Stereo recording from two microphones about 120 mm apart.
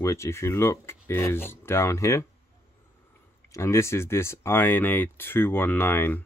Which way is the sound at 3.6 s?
25° left (ahead or behind).